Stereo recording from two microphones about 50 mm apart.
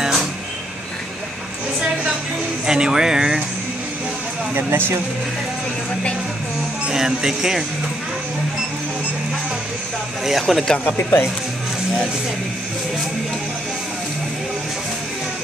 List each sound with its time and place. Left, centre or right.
0.0 s a sound: centre
2.6 s speech: centre
4.6 s speech: right
6.9 s speech: centre
10.4 s speech: centre
11.0 s speech: left